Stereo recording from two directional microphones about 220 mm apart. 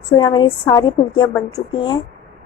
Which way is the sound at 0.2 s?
20° left (ahead or behind).